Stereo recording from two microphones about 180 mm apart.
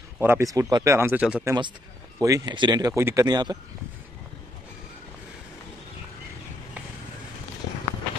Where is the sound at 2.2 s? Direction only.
20° right (ahead or behind).